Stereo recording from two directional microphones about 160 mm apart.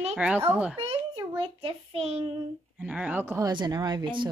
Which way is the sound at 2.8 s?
10° right (ahead or behind).